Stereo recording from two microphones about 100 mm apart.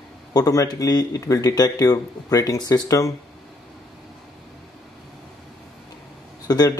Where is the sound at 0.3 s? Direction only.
40° left (ahead or behind).